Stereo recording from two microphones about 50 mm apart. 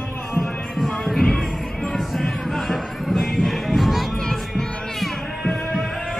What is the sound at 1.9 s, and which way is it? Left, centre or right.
Music, centre.